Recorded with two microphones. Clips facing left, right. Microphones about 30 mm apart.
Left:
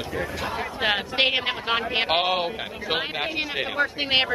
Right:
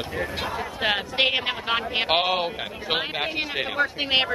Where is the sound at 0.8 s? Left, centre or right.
Centre.